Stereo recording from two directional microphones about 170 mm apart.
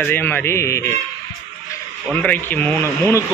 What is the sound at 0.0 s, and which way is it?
Speech, 10° left (ahead or behind).